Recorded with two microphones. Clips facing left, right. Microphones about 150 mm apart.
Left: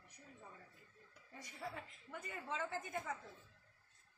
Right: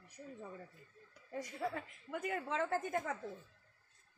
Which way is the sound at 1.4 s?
90° right.